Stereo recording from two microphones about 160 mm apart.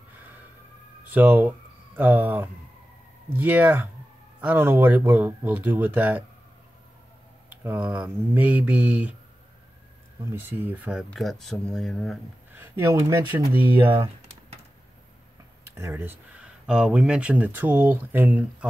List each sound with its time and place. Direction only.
1.0 s speech: 10° right (ahead or behind)
7.6 s speech: 10° right (ahead or behind)
10.5 s speech: 10° right (ahead or behind)
12.5 s speech: 15° right (ahead or behind)
15.7 s speech: 15° right (ahead or behind)